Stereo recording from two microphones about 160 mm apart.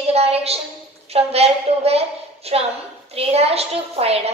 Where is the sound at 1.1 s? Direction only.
40° right (ahead or behind).